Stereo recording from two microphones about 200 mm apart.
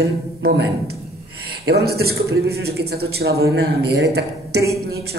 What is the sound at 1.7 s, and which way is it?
A woman's voice, 55° right (ahead or behind).